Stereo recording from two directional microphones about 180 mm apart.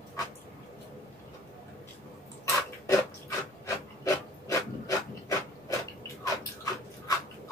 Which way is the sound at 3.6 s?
15° left (ahead or behind).